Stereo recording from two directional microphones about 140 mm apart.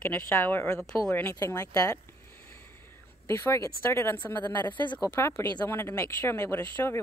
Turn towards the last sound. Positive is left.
turn(degrees=15)  # may be behind; listen again after turning